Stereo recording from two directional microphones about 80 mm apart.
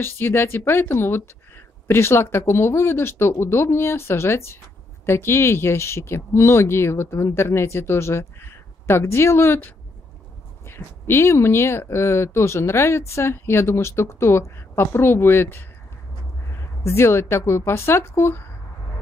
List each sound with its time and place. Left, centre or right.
0.0 s speech: left